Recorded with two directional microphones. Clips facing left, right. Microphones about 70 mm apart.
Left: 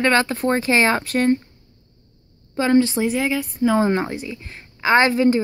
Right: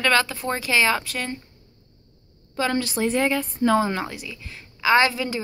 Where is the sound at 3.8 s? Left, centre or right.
Left.